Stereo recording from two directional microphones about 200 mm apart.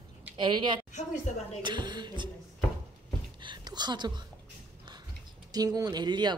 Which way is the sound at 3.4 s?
20° right (ahead or behind).